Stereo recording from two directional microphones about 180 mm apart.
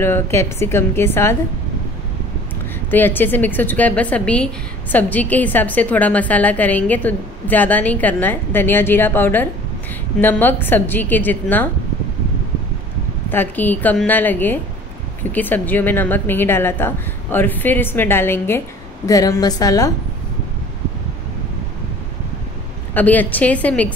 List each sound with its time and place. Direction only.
0.0 s a woman's voice: 15° left (ahead or behind)
2.9 s a woman's voice: 10° left (ahead or behind)
13.3 s a woman's voice: 10° left (ahead or behind)
22.9 s a woman's voice: 10° left (ahead or behind)